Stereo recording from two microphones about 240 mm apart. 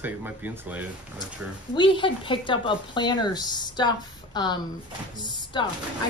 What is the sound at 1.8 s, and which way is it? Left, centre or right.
A woman's voice, left.